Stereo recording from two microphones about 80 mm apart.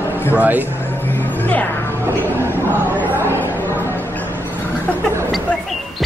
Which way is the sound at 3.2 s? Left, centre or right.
Left.